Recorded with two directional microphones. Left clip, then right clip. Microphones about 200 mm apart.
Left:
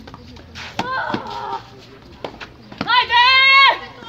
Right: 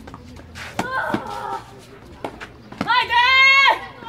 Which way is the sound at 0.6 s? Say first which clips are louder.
Left 1 dB; 25° right (ahead or behind).